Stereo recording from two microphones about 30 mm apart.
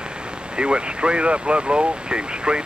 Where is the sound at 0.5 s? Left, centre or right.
Right.